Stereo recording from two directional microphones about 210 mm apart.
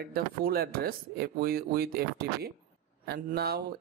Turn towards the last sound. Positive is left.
turn(degrees=-50)  # may be behind; listen again after turning